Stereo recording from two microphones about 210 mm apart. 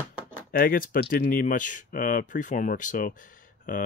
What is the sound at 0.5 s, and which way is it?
Speech, 40° left (ahead or behind).